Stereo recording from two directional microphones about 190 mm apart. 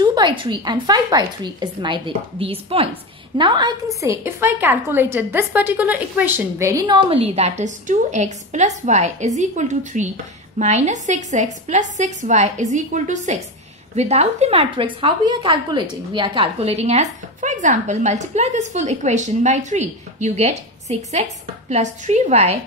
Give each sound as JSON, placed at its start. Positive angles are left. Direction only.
{"t": 0.0, "sound": "a woman's voice", "side_deg": -25}